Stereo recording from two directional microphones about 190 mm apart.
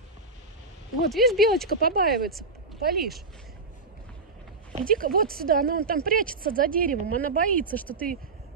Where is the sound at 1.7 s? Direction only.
50° right (ahead or behind).